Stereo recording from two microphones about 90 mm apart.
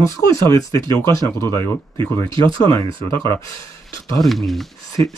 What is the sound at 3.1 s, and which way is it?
Speech, 30° left (ahead or behind).